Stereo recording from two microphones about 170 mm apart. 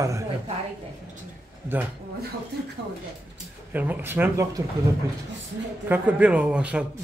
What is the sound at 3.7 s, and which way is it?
Speech, 10° right (ahead or behind).